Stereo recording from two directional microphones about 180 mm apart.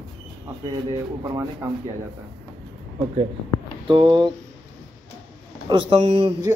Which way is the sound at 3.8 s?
25° right (ahead or behind).